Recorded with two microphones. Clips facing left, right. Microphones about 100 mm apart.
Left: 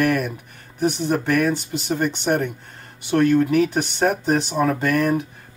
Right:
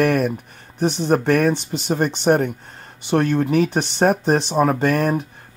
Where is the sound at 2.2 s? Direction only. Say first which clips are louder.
Right 7 dB; 40° right (ahead or behind).